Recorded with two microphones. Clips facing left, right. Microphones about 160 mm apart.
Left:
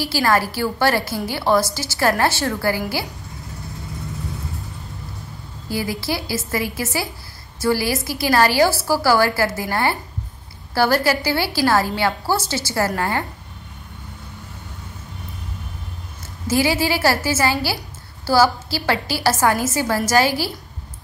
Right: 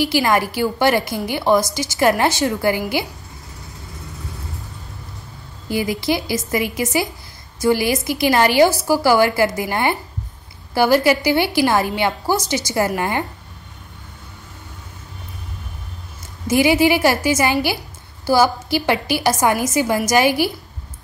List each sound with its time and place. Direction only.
0.0 s a woman's voice: 20° right (ahead or behind)
5.7 s a woman's voice: 20° right (ahead or behind)
16.4 s a woman's voice: 15° right (ahead or behind)